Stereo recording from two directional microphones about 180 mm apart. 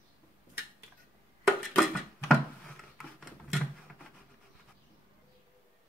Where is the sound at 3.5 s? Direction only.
Centre (ahead or behind).